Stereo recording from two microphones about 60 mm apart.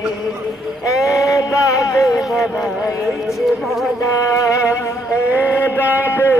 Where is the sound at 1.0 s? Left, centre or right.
Left.